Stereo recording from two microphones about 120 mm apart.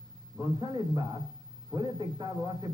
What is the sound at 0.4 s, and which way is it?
Speech, 35° right (ahead or behind).